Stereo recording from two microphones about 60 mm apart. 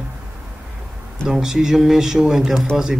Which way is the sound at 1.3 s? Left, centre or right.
Centre.